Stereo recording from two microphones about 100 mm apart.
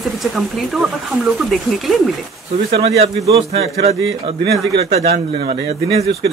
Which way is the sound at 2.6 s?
85° right.